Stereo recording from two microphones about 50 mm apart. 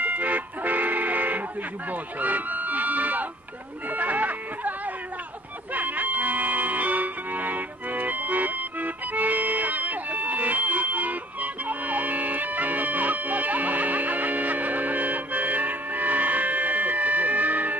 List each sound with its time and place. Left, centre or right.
0.0 s music: right
1.9 s speech: right
5.7 s music: right